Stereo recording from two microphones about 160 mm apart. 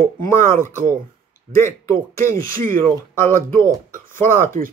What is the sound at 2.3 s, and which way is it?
Speech, 60° right (ahead or behind).